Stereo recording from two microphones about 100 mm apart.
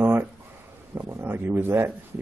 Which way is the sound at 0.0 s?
20° right (ahead or behind).